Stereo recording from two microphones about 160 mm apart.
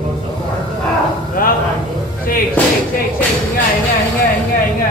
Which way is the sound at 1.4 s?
70° left (ahead or behind).